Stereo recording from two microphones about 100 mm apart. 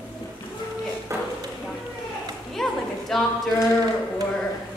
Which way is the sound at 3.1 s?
5° left (ahead or behind).